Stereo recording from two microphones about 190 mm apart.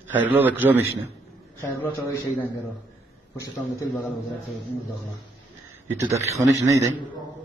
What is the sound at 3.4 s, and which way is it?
Speech, 15° left (ahead or behind).